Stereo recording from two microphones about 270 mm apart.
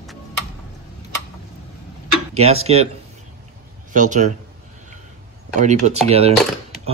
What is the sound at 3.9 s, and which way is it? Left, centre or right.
Speech, right.